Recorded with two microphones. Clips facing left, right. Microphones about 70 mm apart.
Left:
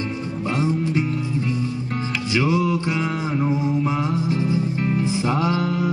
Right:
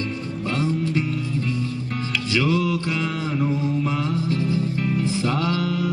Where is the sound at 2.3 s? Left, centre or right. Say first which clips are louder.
Left 1 dB; left.